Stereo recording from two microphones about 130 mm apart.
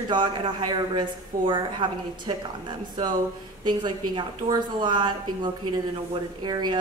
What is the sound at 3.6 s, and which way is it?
A woman's voice, 35° right (ahead or behind).